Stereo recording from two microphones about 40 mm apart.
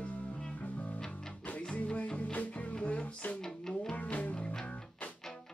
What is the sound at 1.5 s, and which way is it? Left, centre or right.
Music, left.